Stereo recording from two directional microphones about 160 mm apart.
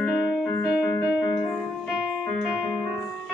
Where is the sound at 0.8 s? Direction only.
15° left (ahead or behind).